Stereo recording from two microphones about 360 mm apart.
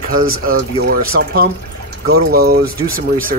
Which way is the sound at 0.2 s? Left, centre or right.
Right.